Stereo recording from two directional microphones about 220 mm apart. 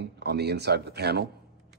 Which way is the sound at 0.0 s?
50° right (ahead or behind).